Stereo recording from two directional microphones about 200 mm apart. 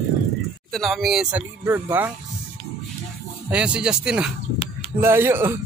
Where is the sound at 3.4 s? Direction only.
5° right (ahead or behind).